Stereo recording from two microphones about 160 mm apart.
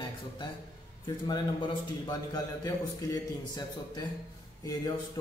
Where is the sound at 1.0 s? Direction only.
25° left (ahead or behind).